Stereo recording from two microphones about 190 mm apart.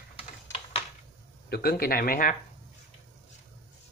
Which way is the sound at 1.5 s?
55° left (ahead or behind).